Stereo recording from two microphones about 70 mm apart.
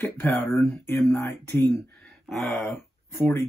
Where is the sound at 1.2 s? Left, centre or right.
Left.